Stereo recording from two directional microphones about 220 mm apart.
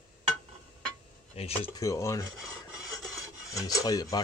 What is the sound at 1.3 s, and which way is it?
Speech, 25° left (ahead or behind).